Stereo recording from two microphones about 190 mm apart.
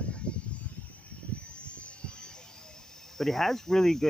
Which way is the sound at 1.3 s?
5° left (ahead or behind).